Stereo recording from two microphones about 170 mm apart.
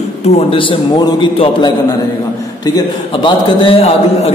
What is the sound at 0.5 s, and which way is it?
A man's voice, 30° left (ahead or behind).